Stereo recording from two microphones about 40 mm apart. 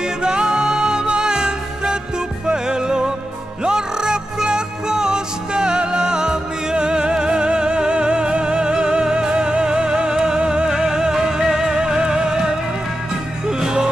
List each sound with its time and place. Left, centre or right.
0.0 s music: right